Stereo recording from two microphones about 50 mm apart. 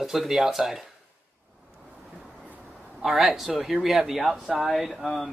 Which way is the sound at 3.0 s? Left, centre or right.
Centre.